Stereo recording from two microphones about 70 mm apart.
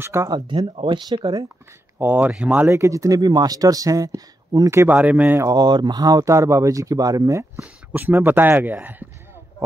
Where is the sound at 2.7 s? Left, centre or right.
Right.